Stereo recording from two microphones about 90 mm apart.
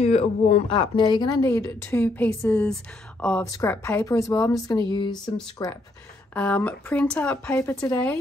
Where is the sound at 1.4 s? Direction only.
35° left (ahead or behind); by 3.5 s 15° left (ahead or behind).